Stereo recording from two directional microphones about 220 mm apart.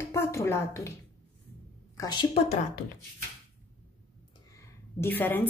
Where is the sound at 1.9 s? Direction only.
20° left (ahead or behind).